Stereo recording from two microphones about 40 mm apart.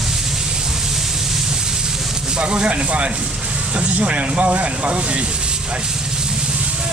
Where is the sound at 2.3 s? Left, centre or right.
Right.